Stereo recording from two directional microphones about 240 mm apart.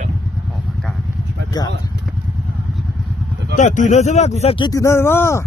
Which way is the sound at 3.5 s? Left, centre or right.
Left.